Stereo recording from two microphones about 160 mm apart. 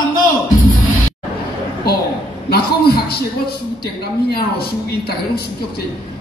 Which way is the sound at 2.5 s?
75° left (ahead or behind).